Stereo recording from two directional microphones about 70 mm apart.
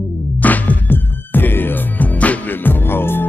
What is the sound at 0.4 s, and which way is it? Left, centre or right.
Music, left.